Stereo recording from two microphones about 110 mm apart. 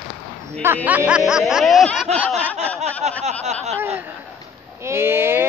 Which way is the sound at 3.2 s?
90° right.